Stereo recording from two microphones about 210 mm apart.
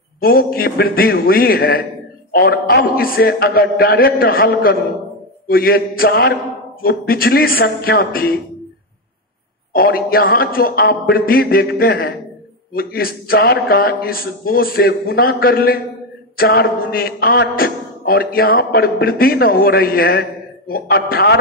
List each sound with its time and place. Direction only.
0.2 s a man's voice: 45° left (ahead or behind)
9.7 s a man's voice: 45° left (ahead or behind)